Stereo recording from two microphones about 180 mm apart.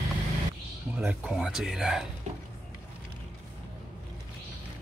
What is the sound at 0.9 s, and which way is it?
A man's voice, 5° right (ahead or behind).